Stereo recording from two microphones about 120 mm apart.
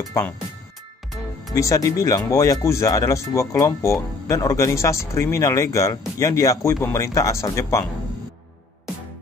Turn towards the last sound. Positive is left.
turn(degrees=25)  # may be behind; listen again after turning